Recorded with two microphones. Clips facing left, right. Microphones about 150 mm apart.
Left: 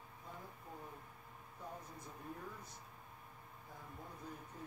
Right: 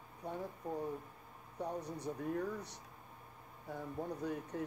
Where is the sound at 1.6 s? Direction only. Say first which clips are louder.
Right 11 dB; 75° right (ahead or behind).